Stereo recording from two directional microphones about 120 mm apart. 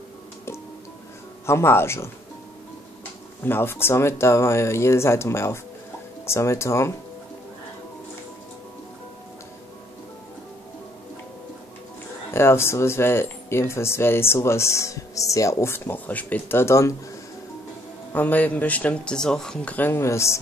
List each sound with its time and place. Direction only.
1.4 s speech: 20° left (ahead or behind)
3.4 s speech: 20° left (ahead or behind)
12.3 s speech: 20° left (ahead or behind)
18.1 s speech: 15° left (ahead or behind)